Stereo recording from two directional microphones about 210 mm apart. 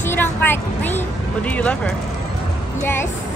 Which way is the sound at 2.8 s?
10° left (ahead or behind).